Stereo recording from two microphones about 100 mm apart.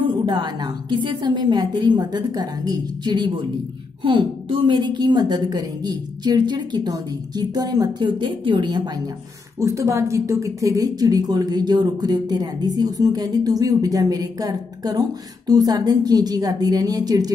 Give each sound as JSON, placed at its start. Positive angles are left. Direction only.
{"t": 0.0, "sound": "a woman's voice", "side_deg": -50}
{"t": 4.0, "sound": "speech", "side_deg": -60}
{"t": 4.7, "sound": "a woman's voice", "side_deg": -45}
{"t": 9.6, "sound": "a woman's voice", "side_deg": -30}